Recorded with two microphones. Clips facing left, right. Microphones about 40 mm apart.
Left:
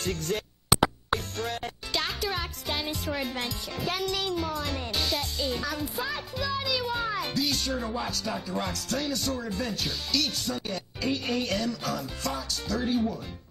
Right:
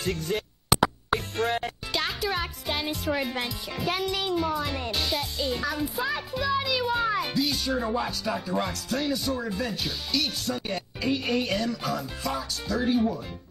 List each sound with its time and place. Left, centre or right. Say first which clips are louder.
0.0 s music: right 2 dB; centre
1.3 s music: right 6 dB; right
1.6 s speech: right 2 dB; centre